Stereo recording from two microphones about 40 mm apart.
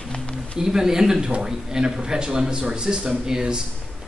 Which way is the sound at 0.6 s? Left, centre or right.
Centre.